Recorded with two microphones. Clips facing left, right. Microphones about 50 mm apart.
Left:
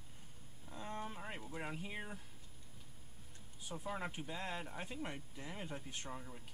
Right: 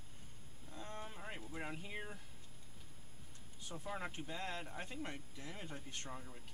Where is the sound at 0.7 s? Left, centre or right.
Centre.